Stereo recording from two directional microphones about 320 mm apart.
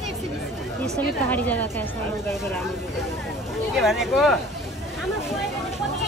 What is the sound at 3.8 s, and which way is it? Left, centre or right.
Speech, centre.